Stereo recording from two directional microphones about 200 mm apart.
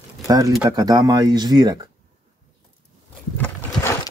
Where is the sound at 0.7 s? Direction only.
20° right (ahead or behind).